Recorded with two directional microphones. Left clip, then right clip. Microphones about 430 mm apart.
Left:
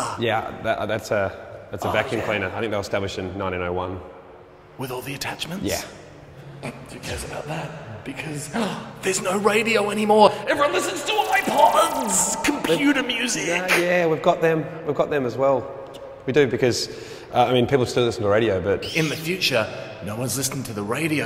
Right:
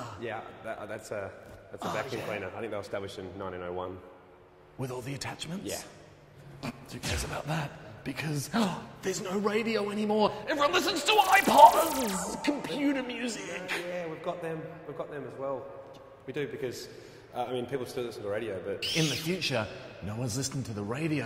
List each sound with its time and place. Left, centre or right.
0.2 s speech: left
4.7 s a man's voice: centre
7.2 s a woman's voice: right
9.0 s a man's voice: centre
10.6 s speech: right
11.2 s speech: centre
13.9 s a man's voice: left
18.8 s speech: centre
19.2 s a man's voice: centre